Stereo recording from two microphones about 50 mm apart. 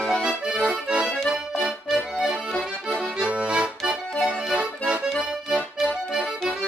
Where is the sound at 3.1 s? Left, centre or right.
Right.